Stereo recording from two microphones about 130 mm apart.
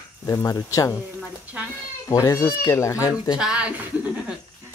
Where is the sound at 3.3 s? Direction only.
10° right (ahead or behind).